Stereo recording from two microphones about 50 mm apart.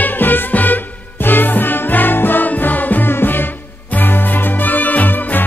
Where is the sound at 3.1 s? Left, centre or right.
Left.